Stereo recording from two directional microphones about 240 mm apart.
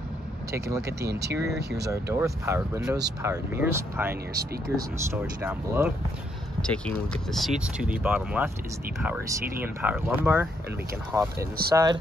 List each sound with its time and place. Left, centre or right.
0.5 s speech: centre
1.0 s speech: right
1.9 s speech: centre
6.6 s speech: centre
9.6 s speech: centre